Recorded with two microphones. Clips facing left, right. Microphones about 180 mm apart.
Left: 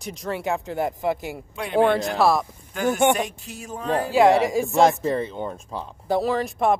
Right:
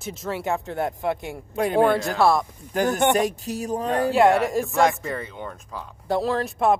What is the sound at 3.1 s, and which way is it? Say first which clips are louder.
Speech: right 5 dB; 40° right (ahead or behind).